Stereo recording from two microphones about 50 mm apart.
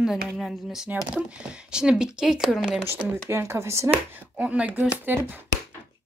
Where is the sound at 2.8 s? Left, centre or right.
Right.